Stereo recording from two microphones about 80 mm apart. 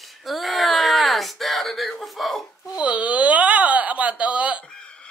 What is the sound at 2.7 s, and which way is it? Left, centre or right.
Speech, centre.